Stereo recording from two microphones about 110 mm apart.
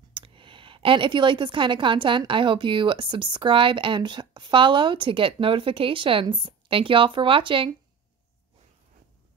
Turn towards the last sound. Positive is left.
turn(degrees=-55)  # may be behind; listen again after turning